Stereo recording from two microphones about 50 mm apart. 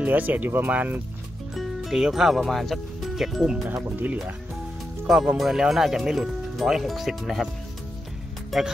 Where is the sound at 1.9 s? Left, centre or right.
Centre.